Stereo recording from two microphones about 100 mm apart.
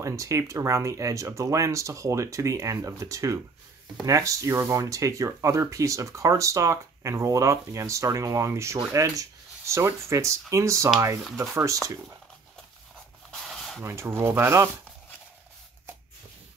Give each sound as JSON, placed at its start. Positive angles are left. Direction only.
{"t": 0.0, "sound": "speech", "side_deg": -30}
{"t": 13.3, "sound": "a sound", "side_deg": 0}
{"t": 13.7, "sound": "speech", "side_deg": -25}